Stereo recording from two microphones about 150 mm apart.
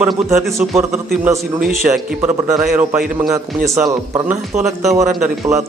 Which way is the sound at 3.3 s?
20° right (ahead or behind).